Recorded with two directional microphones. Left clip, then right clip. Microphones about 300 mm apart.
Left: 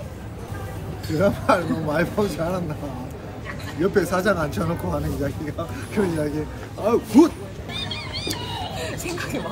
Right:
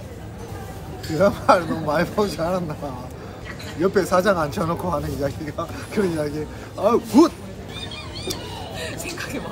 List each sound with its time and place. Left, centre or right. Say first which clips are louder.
1.1 s a man's voice: right 3 dB; centre
3.8 s speech: right 2 dB; centre
8.7 s a sound: left 1 dB; centre